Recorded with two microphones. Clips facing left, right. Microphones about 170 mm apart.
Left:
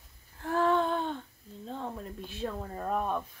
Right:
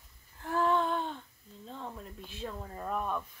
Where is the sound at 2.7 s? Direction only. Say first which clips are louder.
Left 2 dB; 25° left (ahead or behind).